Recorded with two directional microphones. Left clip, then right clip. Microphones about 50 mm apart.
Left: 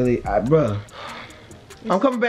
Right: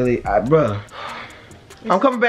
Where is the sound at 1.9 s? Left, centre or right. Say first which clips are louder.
Right 3 dB; right.